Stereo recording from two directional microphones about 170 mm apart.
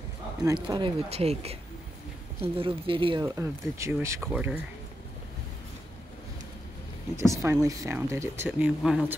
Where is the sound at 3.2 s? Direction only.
15° right (ahead or behind).